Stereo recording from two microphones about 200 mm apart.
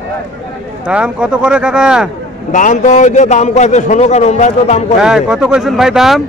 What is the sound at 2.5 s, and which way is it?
A man's voice, 40° left (ahead or behind).